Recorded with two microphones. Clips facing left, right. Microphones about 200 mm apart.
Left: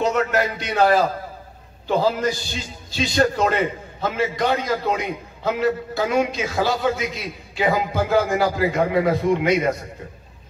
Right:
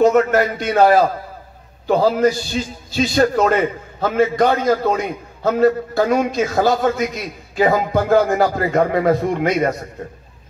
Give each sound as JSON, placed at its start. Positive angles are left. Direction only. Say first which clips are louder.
{"t": 0.0, "sound": "a man's voice", "louder": "right 7 dB", "side_deg": -50}